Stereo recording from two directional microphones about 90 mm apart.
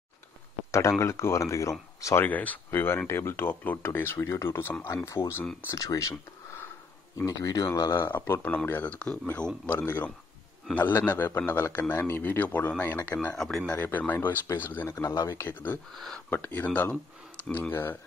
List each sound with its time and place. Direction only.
0.7 s speech: 30° left (ahead or behind)
2.2 s speech: 20° left (ahead or behind); by 6.1 s 40° left (ahead or behind)
7.2 s speech: 40° left (ahead or behind)
7.9 s speech: 25° left (ahead or behind)
13.4 s speech: 5° left (ahead or behind)
13.7 s speech: 20° left (ahead or behind)
15.0 s speech: 35° left (ahead or behind); by 17.9 s 20° left (ahead or behind)